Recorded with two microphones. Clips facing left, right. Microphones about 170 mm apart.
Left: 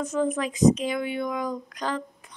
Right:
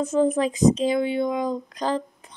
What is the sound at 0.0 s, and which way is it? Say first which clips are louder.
Speech: right 5 dB; 30° right (ahead or behind).